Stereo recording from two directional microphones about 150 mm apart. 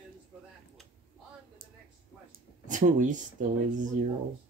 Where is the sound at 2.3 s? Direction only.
60° right (ahead or behind).